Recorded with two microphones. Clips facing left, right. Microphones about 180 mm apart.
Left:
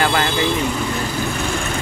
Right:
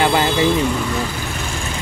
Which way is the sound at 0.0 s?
20° right (ahead or behind).